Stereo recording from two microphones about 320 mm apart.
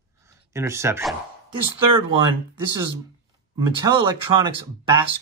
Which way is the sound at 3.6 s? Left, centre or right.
Centre.